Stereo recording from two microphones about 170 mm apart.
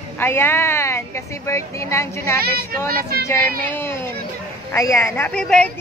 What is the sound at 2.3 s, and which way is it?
Speech, 65° right (ahead or behind).